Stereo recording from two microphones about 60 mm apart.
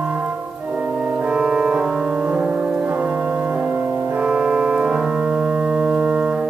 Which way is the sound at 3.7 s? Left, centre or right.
Right.